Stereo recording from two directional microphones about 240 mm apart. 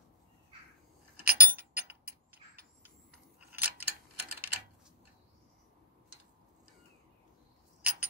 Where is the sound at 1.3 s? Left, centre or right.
Right.